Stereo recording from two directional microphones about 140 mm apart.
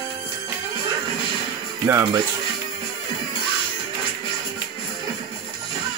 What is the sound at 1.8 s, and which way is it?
Speech, 20° right (ahead or behind).